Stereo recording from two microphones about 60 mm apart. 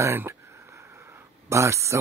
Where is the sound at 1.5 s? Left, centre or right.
Right.